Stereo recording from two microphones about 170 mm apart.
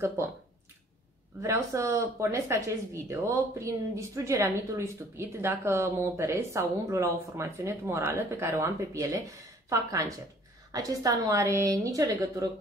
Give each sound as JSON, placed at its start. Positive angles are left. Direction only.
{"t": 1.4, "sound": "a woman's voice", "side_deg": -15}